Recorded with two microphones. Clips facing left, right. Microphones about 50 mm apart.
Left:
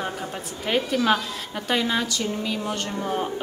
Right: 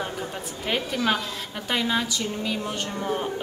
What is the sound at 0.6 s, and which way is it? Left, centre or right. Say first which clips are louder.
Speech: left 3 dB; centre.